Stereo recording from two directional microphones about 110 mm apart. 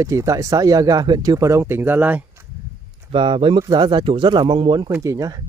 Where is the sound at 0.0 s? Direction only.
30° right (ahead or behind).